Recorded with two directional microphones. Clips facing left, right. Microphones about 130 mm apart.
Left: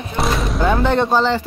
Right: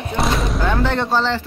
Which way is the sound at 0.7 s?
15° left (ahead or behind).